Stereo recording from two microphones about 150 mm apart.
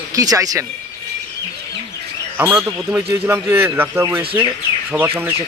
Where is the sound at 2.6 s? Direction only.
15° right (ahead or behind).